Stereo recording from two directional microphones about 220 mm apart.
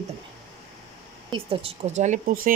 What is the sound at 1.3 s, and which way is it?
Speech, 25° right (ahead or behind).